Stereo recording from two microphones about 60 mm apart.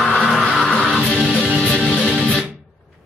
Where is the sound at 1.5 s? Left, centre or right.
Centre.